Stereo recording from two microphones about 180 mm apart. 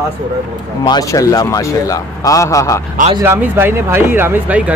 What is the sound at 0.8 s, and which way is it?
A man's voice, 20° left (ahead or behind).